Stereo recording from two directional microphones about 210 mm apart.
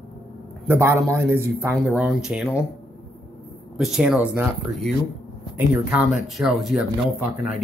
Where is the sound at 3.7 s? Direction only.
Centre (ahead or behind).